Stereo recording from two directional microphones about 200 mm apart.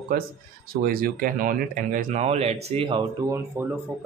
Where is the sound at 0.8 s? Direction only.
45° right (ahead or behind); by 3.0 s 25° right (ahead or behind).